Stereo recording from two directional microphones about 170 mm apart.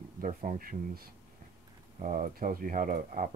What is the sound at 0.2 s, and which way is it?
Speech, 50° right (ahead or behind).